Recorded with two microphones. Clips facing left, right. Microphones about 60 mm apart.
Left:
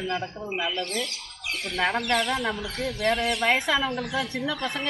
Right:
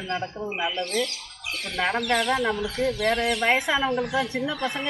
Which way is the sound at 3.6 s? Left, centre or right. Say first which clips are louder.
Right 1 dB; centre.